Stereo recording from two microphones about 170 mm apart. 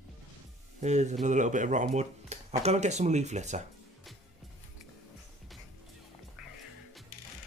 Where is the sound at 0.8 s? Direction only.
45° right (ahead or behind).